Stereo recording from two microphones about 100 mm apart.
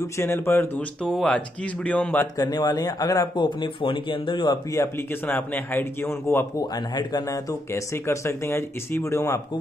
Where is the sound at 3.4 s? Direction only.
55° left (ahead or behind).